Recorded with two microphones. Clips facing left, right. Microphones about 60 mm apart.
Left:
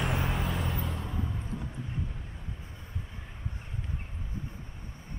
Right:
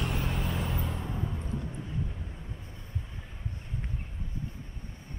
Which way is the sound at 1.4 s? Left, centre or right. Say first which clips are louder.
Right 1 dB; centre.